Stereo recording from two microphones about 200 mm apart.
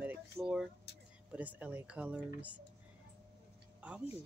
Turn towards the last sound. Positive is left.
turn(degrees=-5)  # may be behind; listen again after turning